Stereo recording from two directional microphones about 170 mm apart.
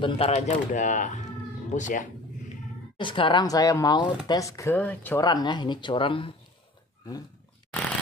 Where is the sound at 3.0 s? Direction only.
30° left (ahead or behind); by 5.2 s 10° left (ahead or behind).